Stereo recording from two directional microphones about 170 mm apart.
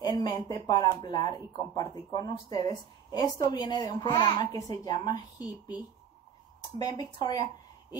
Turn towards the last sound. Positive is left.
turn(degrees=25)  # may be behind; listen again after turning